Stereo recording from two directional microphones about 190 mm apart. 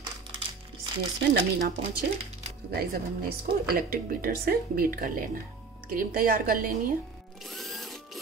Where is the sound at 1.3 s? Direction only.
55° right (ahead or behind).